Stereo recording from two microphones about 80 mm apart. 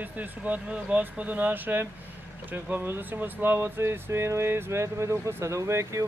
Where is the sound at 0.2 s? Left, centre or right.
Centre.